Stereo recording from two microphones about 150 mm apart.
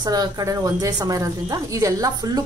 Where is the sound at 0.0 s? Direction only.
25° right (ahead or behind).